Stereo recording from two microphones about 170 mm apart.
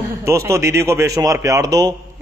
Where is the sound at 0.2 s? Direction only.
15° right (ahead or behind).